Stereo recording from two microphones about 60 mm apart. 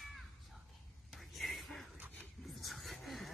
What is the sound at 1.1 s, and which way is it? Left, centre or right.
Whispering, centre.